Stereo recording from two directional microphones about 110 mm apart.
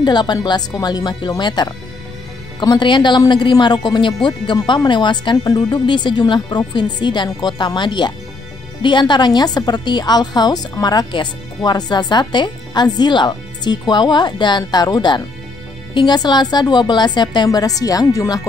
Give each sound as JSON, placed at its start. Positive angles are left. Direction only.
{"t": 0.0, "sound": "a woman's voice", "side_deg": 40}